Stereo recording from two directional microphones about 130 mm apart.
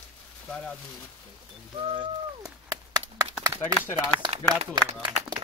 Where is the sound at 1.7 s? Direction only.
40° right (ahead or behind).